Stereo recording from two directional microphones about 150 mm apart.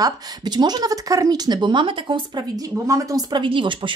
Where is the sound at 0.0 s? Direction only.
30° right (ahead or behind).